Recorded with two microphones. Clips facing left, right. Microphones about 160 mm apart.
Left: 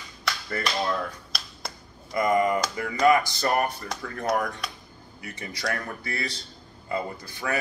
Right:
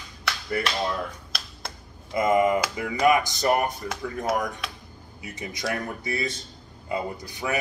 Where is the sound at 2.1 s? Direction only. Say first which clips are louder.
Right 2 dB; 20° right (ahead or behind).